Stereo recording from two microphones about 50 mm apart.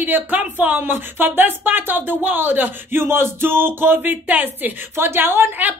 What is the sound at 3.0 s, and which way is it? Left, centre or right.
Speech, right.